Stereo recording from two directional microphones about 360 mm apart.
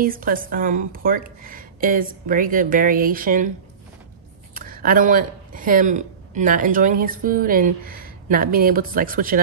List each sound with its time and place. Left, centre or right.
0.0 s speech: right
4.6 s speech: right